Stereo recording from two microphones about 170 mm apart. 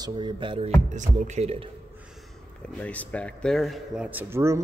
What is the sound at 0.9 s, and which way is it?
Speech, 45° right (ahead or behind).